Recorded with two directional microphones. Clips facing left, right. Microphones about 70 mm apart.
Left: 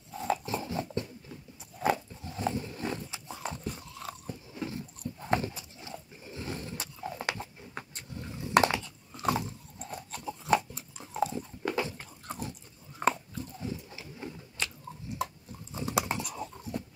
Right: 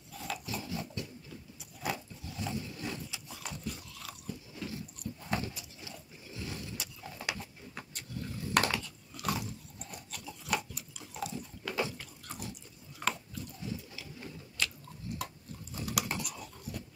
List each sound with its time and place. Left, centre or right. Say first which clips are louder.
0.1 s dog: left 8 dB; left
1.6 s a sound: left 9 dB; left
5.3 s dog: left 7 dB; left
13.0 s biting: left 7 dB; left
14.6 s chewing: even; left
15.7 s a sound: left 5 dB; left